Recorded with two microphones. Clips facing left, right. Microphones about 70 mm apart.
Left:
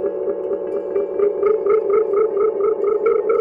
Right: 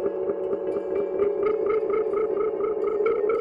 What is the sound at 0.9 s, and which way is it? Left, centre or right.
Music, centre.